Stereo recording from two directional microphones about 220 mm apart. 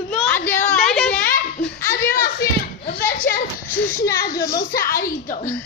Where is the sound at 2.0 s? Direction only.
40° left (ahead or behind).